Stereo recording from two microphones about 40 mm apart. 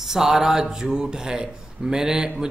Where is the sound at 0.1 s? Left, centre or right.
Centre.